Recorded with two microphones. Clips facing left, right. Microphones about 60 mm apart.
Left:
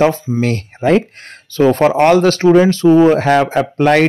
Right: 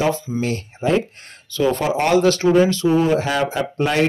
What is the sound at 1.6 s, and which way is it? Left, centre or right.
Speech, left.